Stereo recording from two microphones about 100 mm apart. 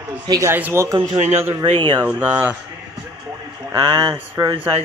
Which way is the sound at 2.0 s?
15° right (ahead or behind).